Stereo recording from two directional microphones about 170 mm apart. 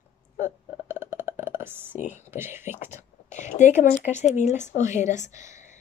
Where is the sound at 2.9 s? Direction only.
45° left (ahead or behind).